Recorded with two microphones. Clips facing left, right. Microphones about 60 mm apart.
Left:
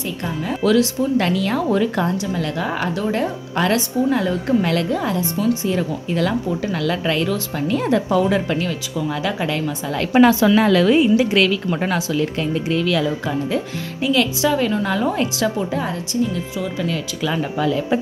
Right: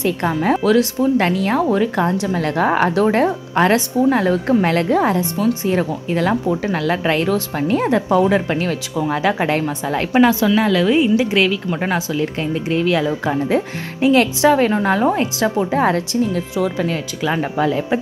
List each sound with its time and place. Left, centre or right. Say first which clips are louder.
0.0 s a woman's voice: right 7 dB; right
0.7 s speech: left 2 dB; right
2.1 s a woman's voice: right 4 dB; right
8.6 s speech: right 3 dB; right
10.4 s a woman's voice: left 1 dB; centre; by 15.7 s right
15.8 s a woman's voice: right 5 dB; right
16.8 s speech: right 2 dB; right